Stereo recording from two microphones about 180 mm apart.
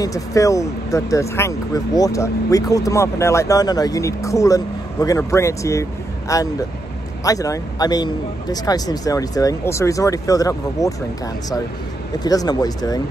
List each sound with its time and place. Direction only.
0.0 s a man's voice: 20° left (ahead or behind)
12.2 s a man's voice: 20° left (ahead or behind)